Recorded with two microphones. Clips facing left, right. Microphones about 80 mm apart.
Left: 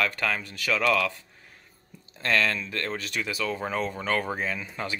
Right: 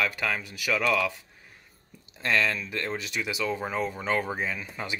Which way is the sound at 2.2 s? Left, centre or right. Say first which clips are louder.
Left 1 dB; centre.